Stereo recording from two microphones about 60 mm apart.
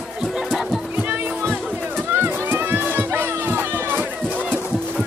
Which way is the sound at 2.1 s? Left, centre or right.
Right.